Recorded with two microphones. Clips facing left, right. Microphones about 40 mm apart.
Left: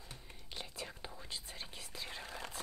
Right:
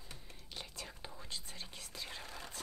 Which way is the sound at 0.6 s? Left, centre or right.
Centre.